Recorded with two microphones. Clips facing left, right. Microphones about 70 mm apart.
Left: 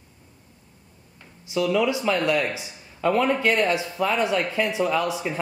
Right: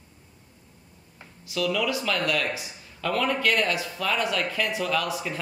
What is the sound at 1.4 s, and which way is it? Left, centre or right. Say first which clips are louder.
Speech: left 4 dB; left.